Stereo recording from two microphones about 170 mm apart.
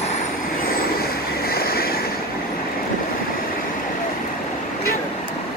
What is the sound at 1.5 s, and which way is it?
Vehicle, 65° left (ahead or behind).